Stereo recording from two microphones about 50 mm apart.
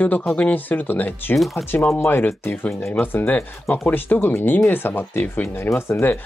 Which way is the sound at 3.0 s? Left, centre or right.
Left.